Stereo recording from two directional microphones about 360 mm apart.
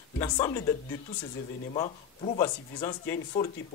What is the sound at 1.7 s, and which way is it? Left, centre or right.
Speech, centre.